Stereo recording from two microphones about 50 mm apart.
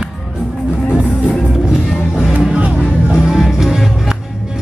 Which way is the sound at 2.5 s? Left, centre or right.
Right.